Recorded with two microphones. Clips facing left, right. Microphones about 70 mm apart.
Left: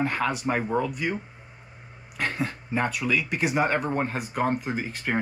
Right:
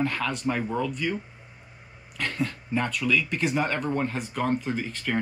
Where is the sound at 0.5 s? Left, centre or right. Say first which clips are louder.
Right 1 dB; left.